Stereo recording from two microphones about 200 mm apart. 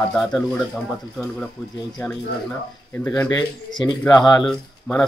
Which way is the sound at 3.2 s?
20° left (ahead or behind).